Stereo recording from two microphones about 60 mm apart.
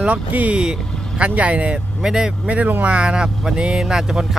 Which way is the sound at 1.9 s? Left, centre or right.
Centre.